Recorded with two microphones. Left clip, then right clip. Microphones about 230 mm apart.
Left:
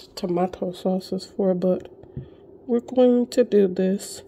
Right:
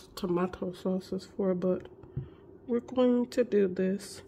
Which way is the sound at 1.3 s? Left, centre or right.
Centre.